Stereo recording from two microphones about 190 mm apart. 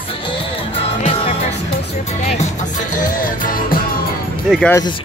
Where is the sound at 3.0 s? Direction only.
45° left (ahead or behind).